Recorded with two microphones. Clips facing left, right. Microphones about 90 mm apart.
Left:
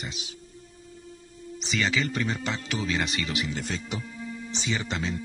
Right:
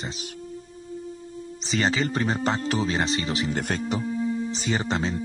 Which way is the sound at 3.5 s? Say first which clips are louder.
Right 5 dB; 50° right (ahead or behind).